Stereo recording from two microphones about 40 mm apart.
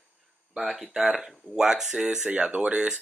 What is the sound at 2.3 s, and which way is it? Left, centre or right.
Speech, right.